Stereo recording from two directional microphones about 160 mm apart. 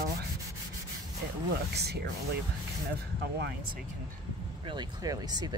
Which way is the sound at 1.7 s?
90° right.